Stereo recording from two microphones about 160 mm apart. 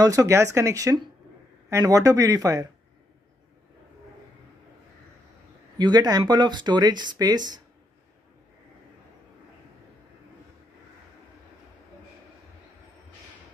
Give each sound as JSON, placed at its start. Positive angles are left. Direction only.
{"t": 0.0, "sound": "speech", "side_deg": -20}
{"t": 5.8, "sound": "speech", "side_deg": -25}